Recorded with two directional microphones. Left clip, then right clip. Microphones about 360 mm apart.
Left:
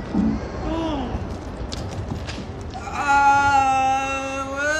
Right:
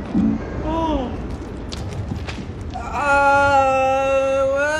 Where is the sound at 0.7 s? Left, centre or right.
Centre.